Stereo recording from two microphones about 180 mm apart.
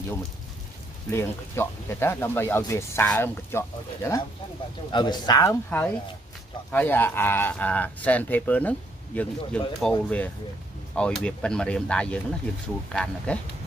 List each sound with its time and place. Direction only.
1.1 s speech: 15° left (ahead or behind)